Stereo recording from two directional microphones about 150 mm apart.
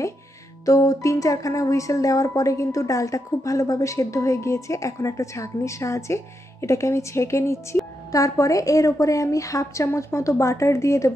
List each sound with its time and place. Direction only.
0.7 s speech: 20° left (ahead or behind)